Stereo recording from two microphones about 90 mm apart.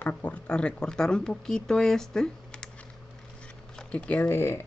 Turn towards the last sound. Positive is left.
turn(degrees=25)  # may be behind; listen again after turning